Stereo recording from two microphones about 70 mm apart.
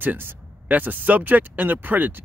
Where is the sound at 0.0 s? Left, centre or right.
Right.